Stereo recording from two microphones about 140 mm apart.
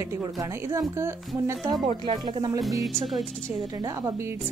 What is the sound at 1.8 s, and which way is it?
Speech, 40° right (ahead or behind).